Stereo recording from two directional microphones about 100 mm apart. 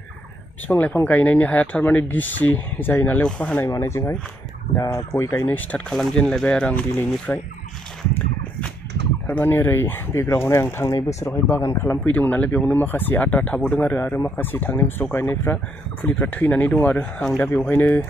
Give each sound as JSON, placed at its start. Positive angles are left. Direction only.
{"t": 0.7, "sound": "speech", "side_deg": 15}
{"t": 3.7, "sound": "speech", "side_deg": 30}
{"t": 9.3, "sound": "speech", "side_deg": 20}
{"t": 12.0, "sound": "speech", "side_deg": 15}